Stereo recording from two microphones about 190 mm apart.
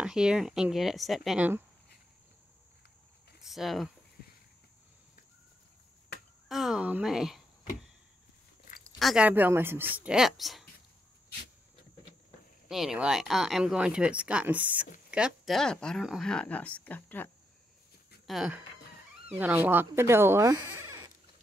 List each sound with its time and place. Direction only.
0.0 s speech: 5° right (ahead or behind)
3.3 s speech: centre (ahead or behind)
6.5 s speech: centre (ahead or behind)
9.0 s speech: 5° right (ahead or behind)
12.6 s speech: centre (ahead or behind)
18.2 s speech: centre (ahead or behind); by 20.6 s 15° right (ahead or behind)